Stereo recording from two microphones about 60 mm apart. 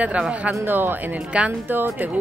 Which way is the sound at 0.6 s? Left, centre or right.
Right.